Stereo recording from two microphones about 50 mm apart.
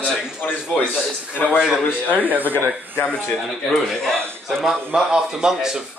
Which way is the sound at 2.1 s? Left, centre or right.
Right.